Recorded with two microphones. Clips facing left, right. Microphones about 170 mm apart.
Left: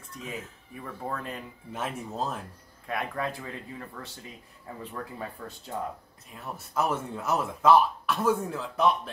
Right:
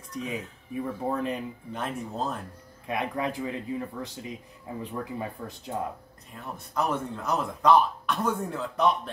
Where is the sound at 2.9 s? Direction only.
15° right (ahead or behind).